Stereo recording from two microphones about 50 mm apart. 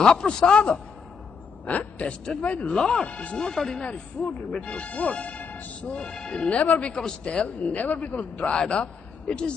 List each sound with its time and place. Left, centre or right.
0.0 s speech: centre
2.7 s speech: centre
3.8 s a man's voice: left